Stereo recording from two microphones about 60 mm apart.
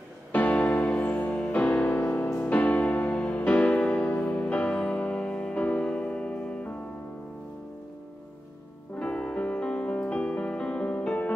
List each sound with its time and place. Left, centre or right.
0.3 s music: left
8.9 s music: centre